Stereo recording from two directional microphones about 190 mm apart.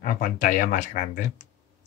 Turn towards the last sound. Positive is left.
turn(degrees=40)  # may be behind; listen again after turning